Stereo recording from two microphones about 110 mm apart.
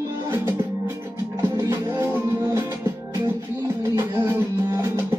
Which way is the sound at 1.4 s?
25° right (ahead or behind).